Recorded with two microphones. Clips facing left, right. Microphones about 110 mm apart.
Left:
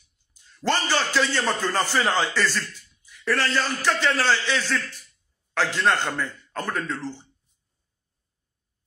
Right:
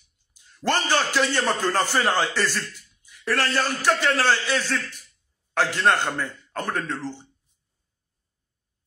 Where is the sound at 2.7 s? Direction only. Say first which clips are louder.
Left 1 dB; 15° right (ahead or behind).